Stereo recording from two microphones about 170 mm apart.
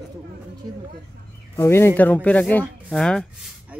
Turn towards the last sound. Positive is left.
turn(degrees=5)  # may be behind; listen again after turning